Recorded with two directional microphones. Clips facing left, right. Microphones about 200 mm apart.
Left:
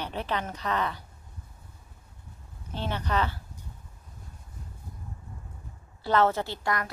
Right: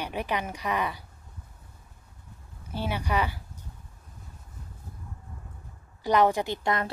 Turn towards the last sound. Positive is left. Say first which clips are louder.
# right 3 dB
turn(degrees=-25)  # may be behind; listen again after turning